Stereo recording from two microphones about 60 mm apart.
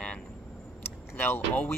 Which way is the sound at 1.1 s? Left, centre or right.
Left.